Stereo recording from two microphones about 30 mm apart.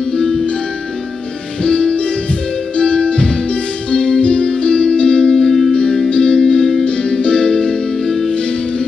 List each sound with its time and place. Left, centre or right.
0.1 s music: centre
1.6 s music: left
5.3 s music: centre
5.7 s music: left
6.8 s music: left
8.1 s music: centre